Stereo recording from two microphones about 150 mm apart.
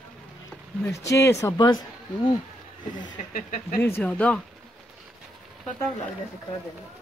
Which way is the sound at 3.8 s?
15° left (ahead or behind).